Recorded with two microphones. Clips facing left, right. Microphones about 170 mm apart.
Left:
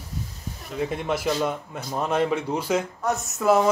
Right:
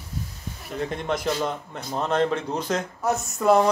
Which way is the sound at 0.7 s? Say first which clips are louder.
Left 1 dB; 5° left (ahead or behind).